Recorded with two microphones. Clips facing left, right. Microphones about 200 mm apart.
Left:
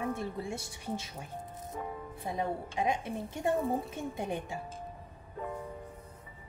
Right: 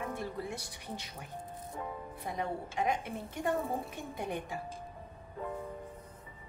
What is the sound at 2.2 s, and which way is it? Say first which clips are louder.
A woman's voice: left 3 dB; 25° left (ahead or behind).